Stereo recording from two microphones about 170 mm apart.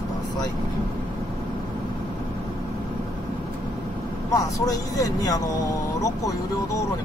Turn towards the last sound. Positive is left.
turn(degrees=20)  # may be behind; listen again after turning